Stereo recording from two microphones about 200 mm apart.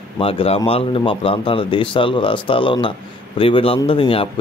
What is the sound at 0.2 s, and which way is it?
Speech, 30° left (ahead or behind).